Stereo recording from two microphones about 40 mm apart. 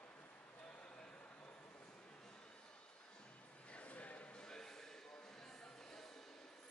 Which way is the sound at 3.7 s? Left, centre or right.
Left.